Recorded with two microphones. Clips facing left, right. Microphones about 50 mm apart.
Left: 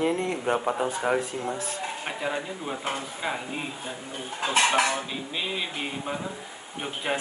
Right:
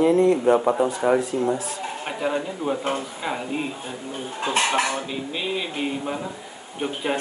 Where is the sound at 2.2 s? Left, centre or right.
Centre.